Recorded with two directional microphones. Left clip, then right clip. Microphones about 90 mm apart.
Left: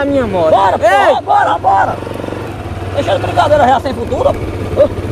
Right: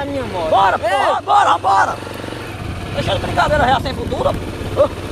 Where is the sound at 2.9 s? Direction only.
10° left (ahead or behind).